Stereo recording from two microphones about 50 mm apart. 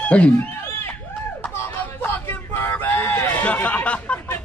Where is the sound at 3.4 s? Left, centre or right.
Left.